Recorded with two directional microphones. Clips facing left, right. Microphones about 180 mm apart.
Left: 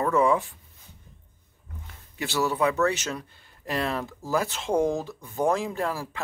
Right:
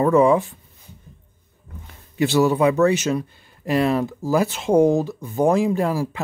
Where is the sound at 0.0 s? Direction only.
20° right (ahead or behind).